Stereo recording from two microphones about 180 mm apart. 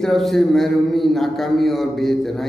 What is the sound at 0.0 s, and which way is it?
A man's voice, centre (ahead or behind).